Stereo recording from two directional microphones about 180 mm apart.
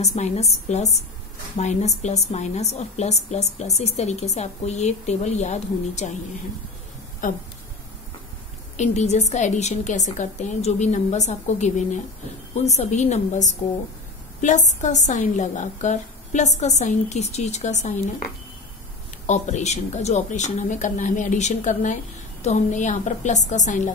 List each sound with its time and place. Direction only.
0.0 s a woman's voice: 40° left (ahead or behind)
7.2 s a woman's voice: 50° left (ahead or behind)
8.7 s a woman's voice: 40° left (ahead or behind)
19.2 s a woman's voice: 40° left (ahead or behind)